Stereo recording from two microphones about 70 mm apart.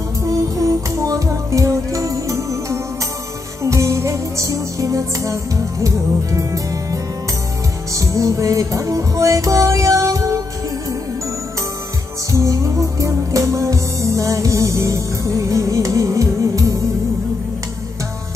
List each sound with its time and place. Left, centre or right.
0.2 s music: right
12.3 s music: right